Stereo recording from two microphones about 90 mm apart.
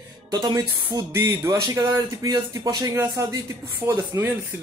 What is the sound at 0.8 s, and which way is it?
Speech, 30° right (ahead or behind).